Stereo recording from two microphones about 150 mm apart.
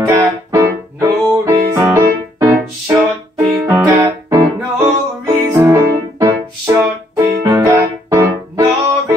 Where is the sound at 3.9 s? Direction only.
15° right (ahead or behind).